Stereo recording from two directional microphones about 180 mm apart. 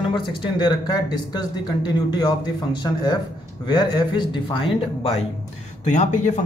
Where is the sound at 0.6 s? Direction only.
25° left (ahead or behind).